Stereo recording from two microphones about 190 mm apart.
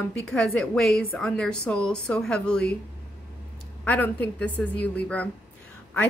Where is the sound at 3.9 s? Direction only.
10° left (ahead or behind).